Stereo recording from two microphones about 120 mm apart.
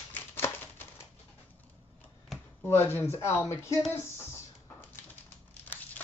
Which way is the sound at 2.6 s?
20° left (ahead or behind).